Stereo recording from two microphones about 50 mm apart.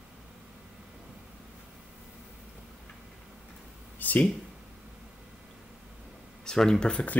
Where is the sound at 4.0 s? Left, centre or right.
Left.